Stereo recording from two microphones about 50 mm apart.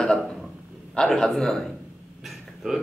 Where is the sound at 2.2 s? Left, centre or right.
Centre.